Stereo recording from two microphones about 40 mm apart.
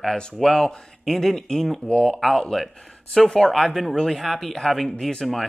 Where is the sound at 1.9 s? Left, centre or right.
Centre.